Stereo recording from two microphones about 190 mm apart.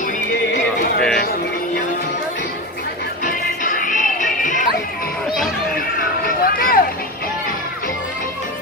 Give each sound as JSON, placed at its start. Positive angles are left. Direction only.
{"t": 0.5, "sound": "horse", "side_deg": 65}
{"t": 3.3, "sound": "music", "side_deg": 45}
{"t": 6.2, "sound": "a sound", "side_deg": 45}